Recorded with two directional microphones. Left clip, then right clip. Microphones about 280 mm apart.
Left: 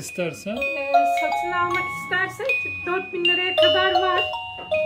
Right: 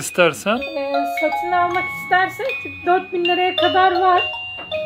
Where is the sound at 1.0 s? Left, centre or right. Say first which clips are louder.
Left 1 dB; left.